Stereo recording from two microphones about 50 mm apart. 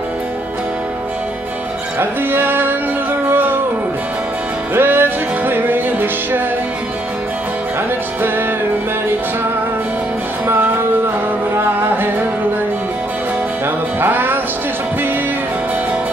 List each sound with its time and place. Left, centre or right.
2.0 s music: right
4.7 s music: right
10.4 s music: right
13.9 s music: right